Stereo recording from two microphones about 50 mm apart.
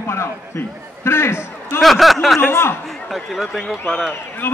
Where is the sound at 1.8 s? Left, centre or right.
Centre.